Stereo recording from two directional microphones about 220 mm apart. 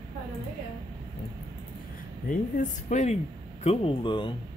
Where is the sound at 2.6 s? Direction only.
30° left (ahead or behind).